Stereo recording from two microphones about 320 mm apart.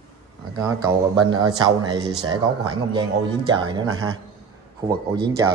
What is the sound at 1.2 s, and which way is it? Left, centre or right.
Speech, centre.